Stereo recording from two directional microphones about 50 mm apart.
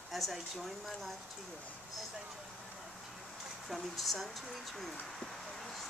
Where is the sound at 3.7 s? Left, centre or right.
Centre.